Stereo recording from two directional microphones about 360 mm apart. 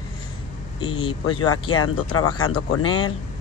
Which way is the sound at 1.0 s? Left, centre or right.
Centre.